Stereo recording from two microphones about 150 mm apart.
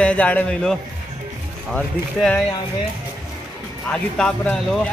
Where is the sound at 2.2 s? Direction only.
5° left (ahead or behind).